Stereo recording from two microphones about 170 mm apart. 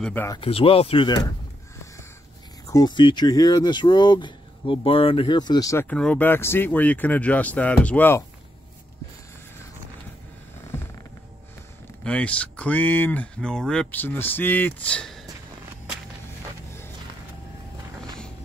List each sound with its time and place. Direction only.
0.0 s speech: 10° left (ahead or behind)
0.3 s speech: 30° left (ahead or behind)
2.7 s speech: 25° left (ahead or behind)
12.0 s speech: 5° left (ahead or behind)